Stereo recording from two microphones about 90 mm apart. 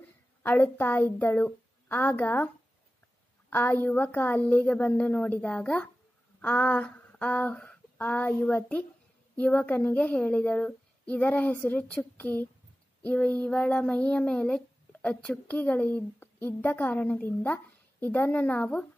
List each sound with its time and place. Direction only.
0.4 s a woman's voice: 25° left (ahead or behind)